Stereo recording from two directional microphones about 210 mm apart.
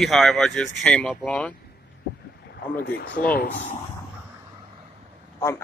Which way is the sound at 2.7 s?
50° left (ahead or behind).